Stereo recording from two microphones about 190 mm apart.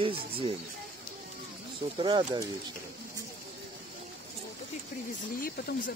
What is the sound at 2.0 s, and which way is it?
Speech, 25° right (ahead or behind).